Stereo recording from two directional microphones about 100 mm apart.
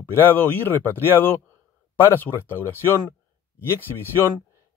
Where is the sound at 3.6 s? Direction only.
20° left (ahead or behind).